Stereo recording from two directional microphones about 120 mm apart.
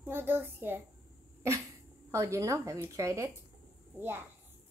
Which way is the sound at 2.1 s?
25° right (ahead or behind).